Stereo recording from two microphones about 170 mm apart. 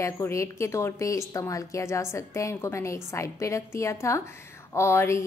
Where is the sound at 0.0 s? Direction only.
15° left (ahead or behind).